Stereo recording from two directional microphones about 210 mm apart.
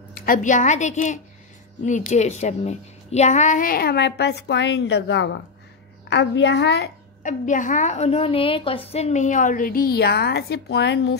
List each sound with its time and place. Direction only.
0.1 s a woman's voice: 40° left (ahead or behind)
7.2 s a woman's voice: 35° left (ahead or behind); by 11.1 s 55° left (ahead or behind)